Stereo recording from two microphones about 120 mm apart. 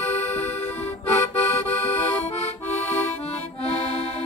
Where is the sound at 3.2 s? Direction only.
60° left (ahead or behind).